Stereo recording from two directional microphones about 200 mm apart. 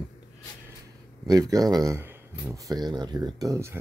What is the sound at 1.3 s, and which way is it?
Speech, 20° right (ahead or behind).